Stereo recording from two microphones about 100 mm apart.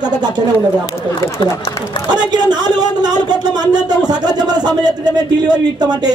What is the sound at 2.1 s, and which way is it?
A man's voice, 45° right (ahead or behind).